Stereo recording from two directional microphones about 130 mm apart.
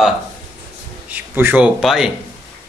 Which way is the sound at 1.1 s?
15° right (ahead or behind).